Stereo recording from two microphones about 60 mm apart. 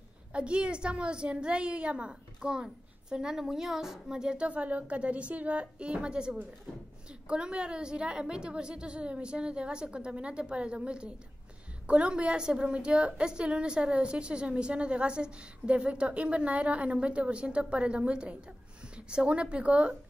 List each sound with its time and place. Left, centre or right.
0.3 s a woman's voice: centre